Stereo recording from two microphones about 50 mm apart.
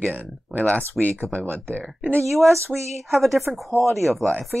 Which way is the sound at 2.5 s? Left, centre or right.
Right.